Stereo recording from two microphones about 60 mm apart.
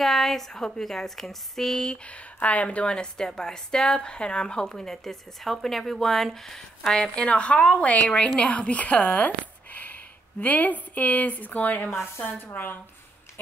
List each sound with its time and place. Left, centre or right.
0.0 s a woman's voice: centre
2.0 s a woman's voice: left
12.0 s speech: left